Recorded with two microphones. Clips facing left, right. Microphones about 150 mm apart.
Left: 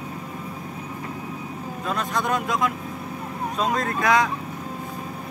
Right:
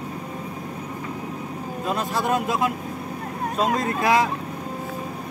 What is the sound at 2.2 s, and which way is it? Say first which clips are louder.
Speech: right 3 dB; 25° right (ahead or behind).